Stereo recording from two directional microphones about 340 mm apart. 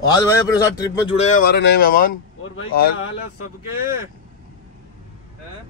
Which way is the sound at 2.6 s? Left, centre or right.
Left.